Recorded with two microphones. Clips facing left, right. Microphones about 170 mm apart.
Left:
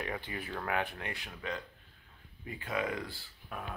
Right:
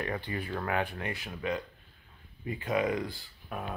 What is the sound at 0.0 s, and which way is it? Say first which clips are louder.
Speech: right 4 dB; 5° left (ahead or behind).